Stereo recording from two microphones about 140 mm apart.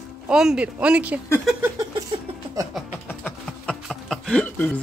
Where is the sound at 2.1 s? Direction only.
40° right (ahead or behind).